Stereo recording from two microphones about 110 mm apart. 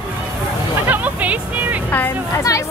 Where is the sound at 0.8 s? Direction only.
15° right (ahead or behind).